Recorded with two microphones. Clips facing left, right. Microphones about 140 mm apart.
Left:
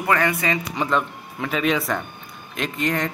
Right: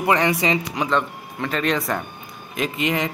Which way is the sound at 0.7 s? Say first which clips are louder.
Right 1 dB; centre (ahead or behind).